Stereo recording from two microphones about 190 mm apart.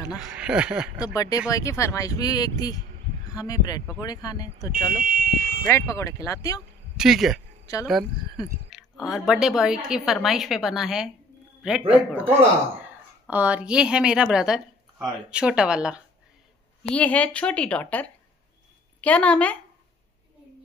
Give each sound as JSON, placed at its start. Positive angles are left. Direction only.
{"t": 0.2, "sound": "speech", "side_deg": -5}
{"t": 1.1, "sound": "speech", "side_deg": 20}
{"t": 5.0, "sound": "speech", "side_deg": -50}
{"t": 5.7, "sound": "speech", "side_deg": 15}
{"t": 7.0, "sound": "speech", "side_deg": 0}
{"t": 8.6, "sound": "speech", "side_deg": 0}
{"t": 16.9, "sound": "speech", "side_deg": 5}